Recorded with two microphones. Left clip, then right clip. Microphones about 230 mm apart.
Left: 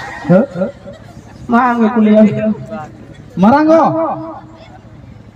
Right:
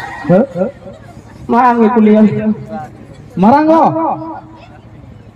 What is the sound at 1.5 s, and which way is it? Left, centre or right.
Speech, right.